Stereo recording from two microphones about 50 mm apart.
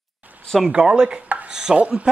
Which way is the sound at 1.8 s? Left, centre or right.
Right.